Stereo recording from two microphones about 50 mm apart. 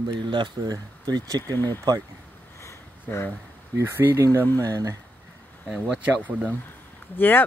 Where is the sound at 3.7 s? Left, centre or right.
Right.